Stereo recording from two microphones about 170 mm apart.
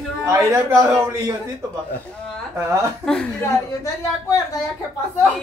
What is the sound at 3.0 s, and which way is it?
Speech, 5° left (ahead or behind).